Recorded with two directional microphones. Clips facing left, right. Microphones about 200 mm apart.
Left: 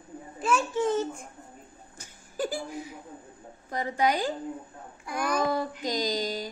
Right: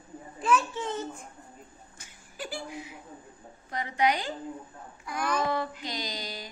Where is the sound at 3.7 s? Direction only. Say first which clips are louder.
Left 1 dB; 40° left (ahead or behind).